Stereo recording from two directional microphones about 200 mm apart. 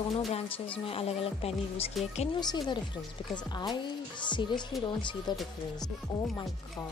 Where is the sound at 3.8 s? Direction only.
25° left (ahead or behind).